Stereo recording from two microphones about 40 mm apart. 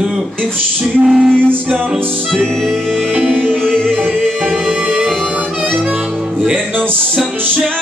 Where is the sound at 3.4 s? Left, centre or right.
Centre.